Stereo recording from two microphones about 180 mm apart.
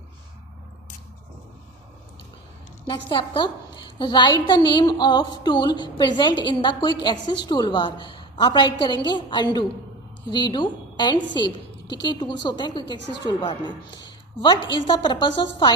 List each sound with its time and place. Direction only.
2.9 s a woman's voice: 25° left (ahead or behind)